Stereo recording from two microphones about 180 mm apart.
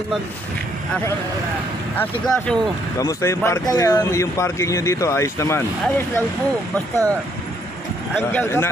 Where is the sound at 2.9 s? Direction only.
15° left (ahead or behind).